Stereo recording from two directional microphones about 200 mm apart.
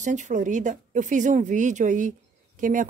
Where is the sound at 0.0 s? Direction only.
35° right (ahead or behind).